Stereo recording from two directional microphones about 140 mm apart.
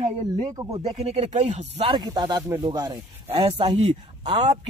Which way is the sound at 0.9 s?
50° right (ahead or behind).